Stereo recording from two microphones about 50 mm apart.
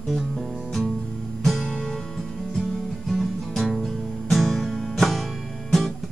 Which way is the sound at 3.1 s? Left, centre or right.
Centre.